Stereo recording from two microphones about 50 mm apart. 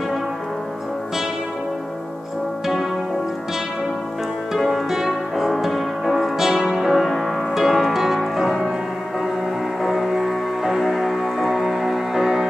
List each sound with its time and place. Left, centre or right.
2.6 s music: centre
4.6 s music: centre
9.8 s music: centre